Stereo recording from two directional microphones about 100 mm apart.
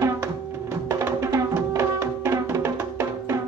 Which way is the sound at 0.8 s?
25° right (ahead or behind).